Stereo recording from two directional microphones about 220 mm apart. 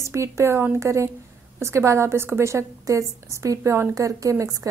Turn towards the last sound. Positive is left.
turn(degrees=-15)  # may be behind; listen again after turning